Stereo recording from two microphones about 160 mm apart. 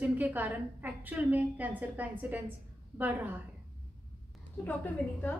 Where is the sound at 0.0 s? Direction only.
10° right (ahead or behind).